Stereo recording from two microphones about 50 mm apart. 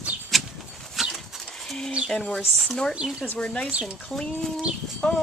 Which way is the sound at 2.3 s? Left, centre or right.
Centre.